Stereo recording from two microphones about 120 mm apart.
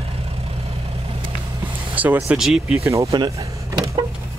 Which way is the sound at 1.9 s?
15° right (ahead or behind).